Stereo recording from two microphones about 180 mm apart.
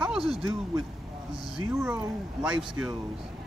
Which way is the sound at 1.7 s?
10° right (ahead or behind).